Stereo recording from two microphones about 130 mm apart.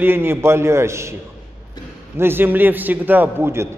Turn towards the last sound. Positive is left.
turn(degrees=-20)  # may be behind; listen again after turning